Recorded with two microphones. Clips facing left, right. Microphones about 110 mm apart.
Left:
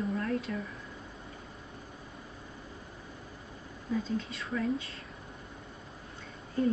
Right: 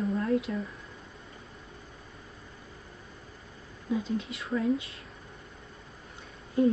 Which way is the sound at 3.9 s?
15° right (ahead or behind).